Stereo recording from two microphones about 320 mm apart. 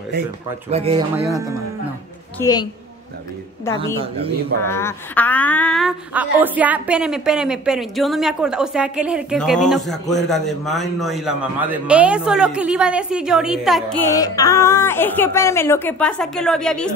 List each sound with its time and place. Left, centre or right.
0.7 s speech: centre
2.3 s a woman's voice: centre
4.6 s a woman's voice: centre